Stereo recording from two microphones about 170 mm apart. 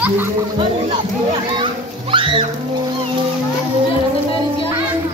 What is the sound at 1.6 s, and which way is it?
Music, 30° right (ahead or behind).